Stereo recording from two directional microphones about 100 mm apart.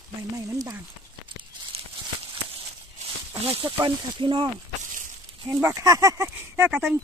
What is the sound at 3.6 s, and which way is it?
Speech, 50° right (ahead or behind).